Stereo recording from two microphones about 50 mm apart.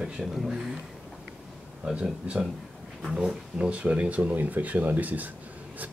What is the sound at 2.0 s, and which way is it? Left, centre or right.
Speech, right.